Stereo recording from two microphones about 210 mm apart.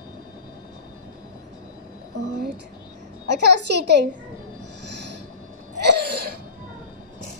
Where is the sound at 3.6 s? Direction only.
55° right (ahead or behind).